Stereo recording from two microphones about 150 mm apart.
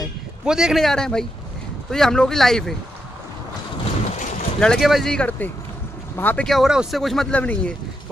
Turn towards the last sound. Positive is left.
turn(degrees=10)  # may be behind; listen again after turning